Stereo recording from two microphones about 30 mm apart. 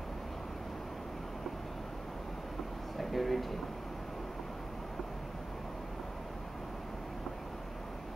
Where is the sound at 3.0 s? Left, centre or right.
Centre.